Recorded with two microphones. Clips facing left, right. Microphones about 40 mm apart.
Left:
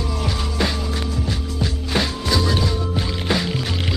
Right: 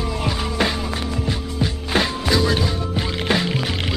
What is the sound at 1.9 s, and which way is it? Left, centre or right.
Music, right.